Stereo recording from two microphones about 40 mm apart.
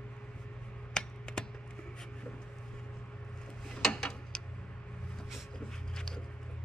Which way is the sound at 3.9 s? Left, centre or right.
Left.